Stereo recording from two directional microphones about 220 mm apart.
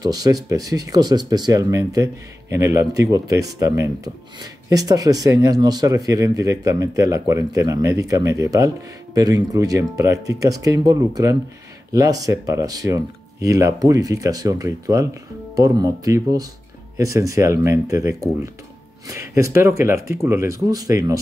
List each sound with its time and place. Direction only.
0.0 s speech: 15° right (ahead or behind)